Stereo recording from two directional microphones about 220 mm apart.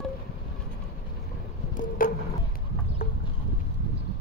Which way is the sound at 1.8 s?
40° left (ahead or behind).